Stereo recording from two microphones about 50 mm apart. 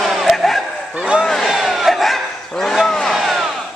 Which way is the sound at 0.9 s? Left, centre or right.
Centre.